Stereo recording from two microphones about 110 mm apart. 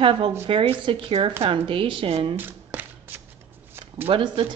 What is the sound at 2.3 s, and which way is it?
Shuffling cards, 15° right (ahead or behind).